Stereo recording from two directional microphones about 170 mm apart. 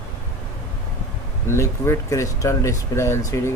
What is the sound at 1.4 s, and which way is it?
Speech, 15° left (ahead or behind).